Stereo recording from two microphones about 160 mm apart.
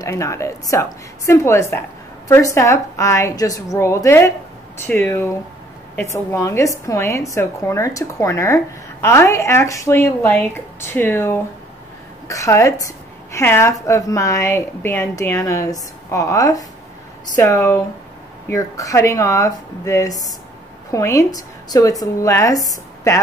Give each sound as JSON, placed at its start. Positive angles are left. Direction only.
{"t": 0.0, "sound": "a woman's voice", "side_deg": 20}